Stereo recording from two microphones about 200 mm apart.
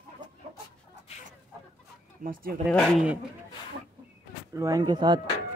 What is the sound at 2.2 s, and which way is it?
Speech, 45° right (ahead or behind).